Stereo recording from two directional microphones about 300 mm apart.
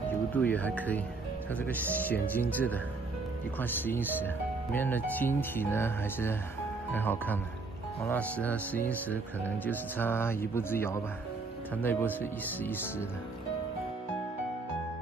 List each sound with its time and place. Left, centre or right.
0.1 s speech: centre